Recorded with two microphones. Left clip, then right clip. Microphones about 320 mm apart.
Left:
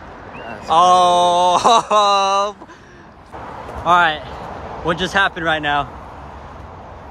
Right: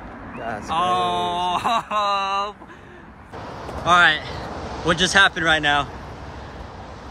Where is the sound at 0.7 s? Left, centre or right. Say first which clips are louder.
Left 10 dB; centre.